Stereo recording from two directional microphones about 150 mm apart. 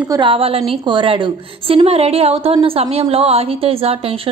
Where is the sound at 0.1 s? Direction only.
35° right (ahead or behind).